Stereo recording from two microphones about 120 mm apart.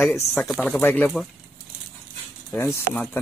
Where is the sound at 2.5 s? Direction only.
15° left (ahead or behind).